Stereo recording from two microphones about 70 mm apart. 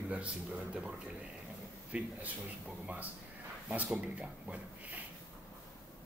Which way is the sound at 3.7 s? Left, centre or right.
Right.